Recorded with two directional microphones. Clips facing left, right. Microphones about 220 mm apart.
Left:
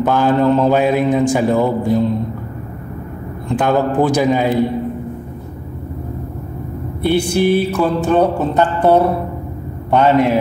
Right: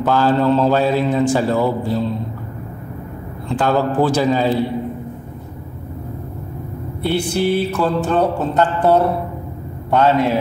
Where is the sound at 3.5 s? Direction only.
15° left (ahead or behind).